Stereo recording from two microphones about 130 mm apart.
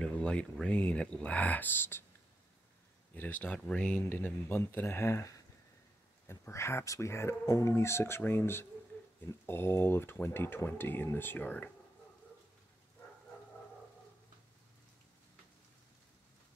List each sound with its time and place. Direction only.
0.0 s speech: 10° left (ahead or behind)
3.2 s speech: 15° left (ahead or behind)